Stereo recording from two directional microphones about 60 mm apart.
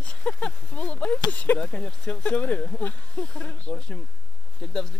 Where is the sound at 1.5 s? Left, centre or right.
Centre.